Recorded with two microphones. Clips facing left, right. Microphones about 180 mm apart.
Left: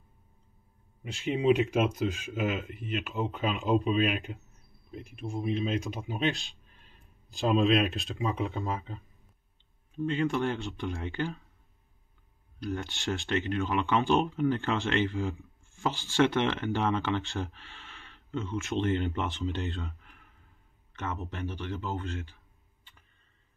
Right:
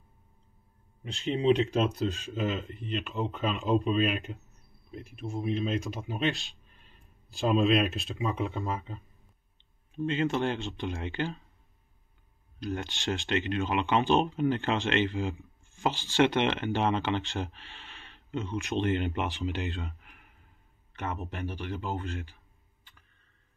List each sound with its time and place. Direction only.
1.0 s speech: centre (ahead or behind)
1.3 s speech: 10° left (ahead or behind)
2.4 s speech: 5° left (ahead or behind)
9.9 s speech: 20° right (ahead or behind)
12.6 s speech: 20° right (ahead or behind)
21.2 s speech: 10° right (ahead or behind)